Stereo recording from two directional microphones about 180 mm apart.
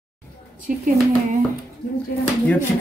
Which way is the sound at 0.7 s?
50° right (ahead or behind).